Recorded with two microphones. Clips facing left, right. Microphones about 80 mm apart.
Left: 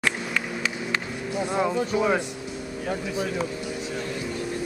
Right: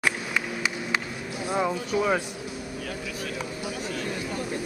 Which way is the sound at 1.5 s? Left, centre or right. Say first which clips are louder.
Left 1 dB; centre.